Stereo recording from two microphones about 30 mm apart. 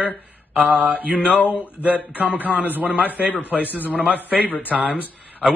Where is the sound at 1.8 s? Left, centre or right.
Right.